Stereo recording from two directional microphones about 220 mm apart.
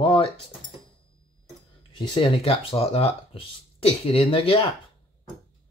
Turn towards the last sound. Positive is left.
turn(degrees=25)  # may be behind; listen again after turning